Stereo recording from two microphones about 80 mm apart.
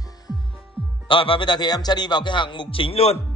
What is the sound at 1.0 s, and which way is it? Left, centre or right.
Speech, left.